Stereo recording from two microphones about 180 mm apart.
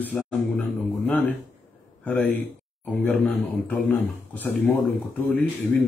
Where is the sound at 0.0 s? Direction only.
10° left (ahead or behind).